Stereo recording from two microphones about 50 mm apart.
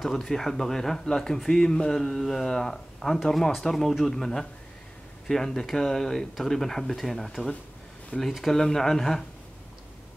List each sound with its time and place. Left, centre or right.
0.0 s speech: centre
8.5 s speech: centre